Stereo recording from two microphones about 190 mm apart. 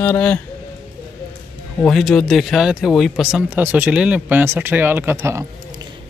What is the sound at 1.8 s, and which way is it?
Speech, centre (ahead or behind).